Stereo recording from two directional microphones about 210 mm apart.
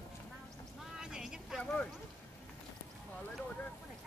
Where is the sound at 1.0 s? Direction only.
5° right (ahead or behind).